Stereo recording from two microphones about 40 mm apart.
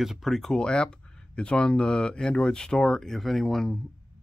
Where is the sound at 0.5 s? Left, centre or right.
Left.